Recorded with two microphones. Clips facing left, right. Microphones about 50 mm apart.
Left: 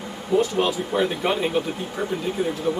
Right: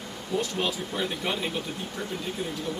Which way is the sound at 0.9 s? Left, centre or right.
Centre.